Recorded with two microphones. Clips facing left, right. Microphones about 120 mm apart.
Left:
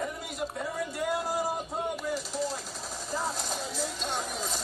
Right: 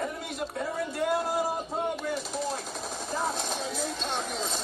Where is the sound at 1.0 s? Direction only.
Centre (ahead or behind).